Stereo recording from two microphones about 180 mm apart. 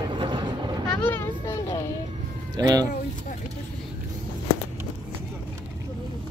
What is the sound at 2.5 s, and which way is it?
Speech, 20° right (ahead or behind).